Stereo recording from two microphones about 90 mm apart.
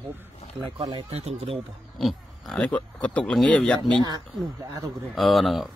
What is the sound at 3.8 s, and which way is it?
Speech, 60° right (ahead or behind).